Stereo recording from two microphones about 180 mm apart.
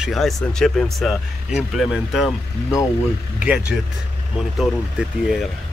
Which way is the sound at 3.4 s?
5° right (ahead or behind).